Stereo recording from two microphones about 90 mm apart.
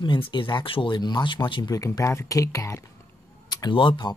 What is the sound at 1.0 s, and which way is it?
Speech, 55° left (ahead or behind).